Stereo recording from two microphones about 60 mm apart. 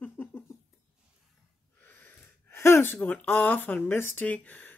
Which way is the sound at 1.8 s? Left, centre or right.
Left.